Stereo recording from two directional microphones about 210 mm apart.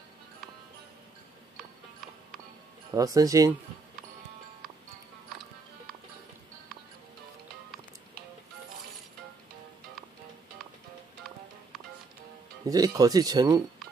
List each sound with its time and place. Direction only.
2.9 s speech: 15° right (ahead or behind)
12.6 s speech: 15° right (ahead or behind)